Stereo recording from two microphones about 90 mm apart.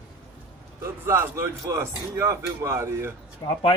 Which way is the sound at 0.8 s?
30° right (ahead or behind).